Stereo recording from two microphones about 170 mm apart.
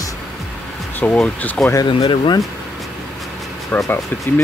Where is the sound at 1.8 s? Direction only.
30° left (ahead or behind).